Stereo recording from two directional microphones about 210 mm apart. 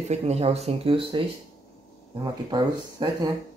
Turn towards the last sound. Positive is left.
turn(degrees=-20)  # may be behind; listen again after turning